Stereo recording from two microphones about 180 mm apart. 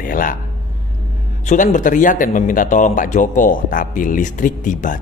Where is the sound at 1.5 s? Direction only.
45° left (ahead or behind).